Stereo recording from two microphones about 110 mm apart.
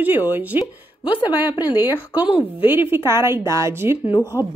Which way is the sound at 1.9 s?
15° right (ahead or behind).